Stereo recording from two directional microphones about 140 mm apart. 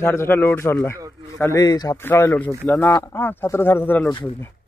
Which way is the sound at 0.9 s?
25° right (ahead or behind).